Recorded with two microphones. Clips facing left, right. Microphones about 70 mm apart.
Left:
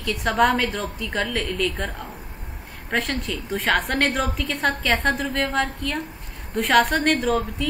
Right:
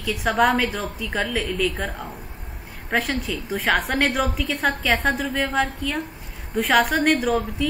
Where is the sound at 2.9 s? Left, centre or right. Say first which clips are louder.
Right 1 dB; centre.